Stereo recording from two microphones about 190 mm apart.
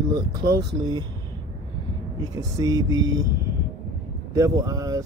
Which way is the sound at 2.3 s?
20° right (ahead or behind).